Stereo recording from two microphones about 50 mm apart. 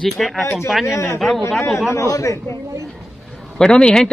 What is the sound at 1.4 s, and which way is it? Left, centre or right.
Speech, left.